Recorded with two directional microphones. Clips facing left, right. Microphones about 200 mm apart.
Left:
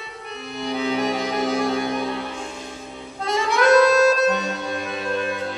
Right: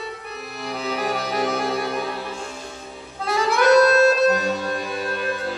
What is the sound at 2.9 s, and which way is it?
Harmonica, centre (ahead or behind).